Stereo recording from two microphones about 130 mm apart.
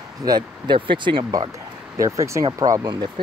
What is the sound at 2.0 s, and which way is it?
Speech, 25° right (ahead or behind).